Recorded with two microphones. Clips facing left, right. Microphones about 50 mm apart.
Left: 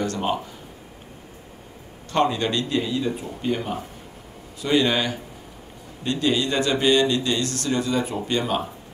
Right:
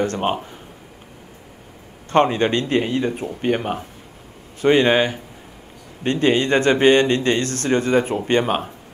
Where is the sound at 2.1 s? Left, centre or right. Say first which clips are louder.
Right 5 dB; right.